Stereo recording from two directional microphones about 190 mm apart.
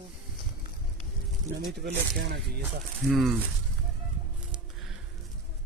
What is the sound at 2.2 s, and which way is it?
Speech, 65° right (ahead or behind).